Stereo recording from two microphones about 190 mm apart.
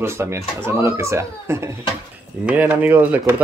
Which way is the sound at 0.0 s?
15° right (ahead or behind).